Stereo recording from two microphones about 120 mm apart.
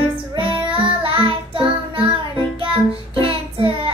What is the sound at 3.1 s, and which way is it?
Music, 50° right (ahead or behind).